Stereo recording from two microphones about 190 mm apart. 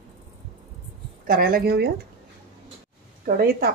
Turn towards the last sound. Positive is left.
turn(degrees=-55)  # may be behind; listen again after turning